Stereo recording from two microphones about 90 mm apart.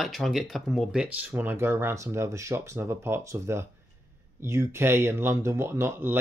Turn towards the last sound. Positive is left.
turn(degrees=-25)  # may be behind; listen again after turning